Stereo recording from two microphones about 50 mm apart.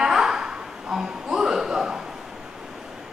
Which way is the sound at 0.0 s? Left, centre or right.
Centre.